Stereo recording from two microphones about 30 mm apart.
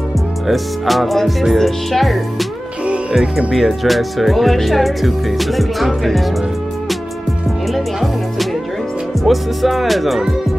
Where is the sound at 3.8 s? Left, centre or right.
Centre.